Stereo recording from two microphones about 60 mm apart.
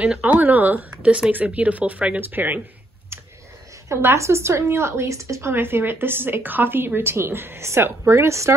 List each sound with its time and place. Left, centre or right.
0.2 s speech: right
1.0 s speech: centre; by 2.6 s right
3.9 s speech: right
5.5 s speech: right